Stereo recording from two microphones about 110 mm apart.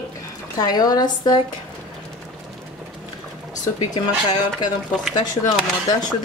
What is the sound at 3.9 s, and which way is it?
Speech, 40° left (ahead or behind).